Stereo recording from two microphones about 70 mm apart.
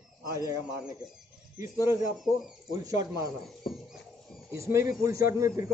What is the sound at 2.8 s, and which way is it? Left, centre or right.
Speech, right.